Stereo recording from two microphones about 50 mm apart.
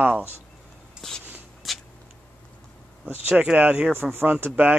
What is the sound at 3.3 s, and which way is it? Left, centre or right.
Speech, right.